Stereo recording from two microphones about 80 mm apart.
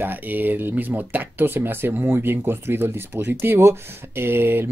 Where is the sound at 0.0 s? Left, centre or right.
Right.